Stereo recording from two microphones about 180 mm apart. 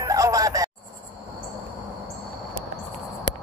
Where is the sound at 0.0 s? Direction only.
20° right (ahead or behind).